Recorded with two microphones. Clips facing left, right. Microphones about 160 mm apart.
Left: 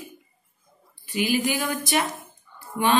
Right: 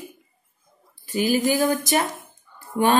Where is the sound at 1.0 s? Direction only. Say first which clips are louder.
Right 3 dB; 40° right (ahead or behind).